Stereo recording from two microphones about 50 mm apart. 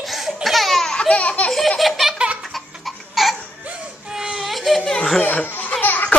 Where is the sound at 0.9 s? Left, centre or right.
Left.